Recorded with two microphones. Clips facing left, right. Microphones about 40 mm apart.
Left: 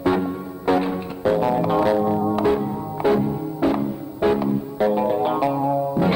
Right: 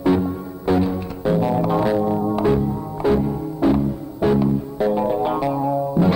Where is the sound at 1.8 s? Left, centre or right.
Centre.